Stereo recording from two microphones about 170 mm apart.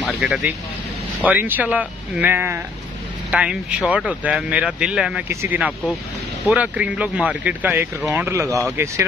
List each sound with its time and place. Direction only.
0.0 s speech: centre (ahead or behind)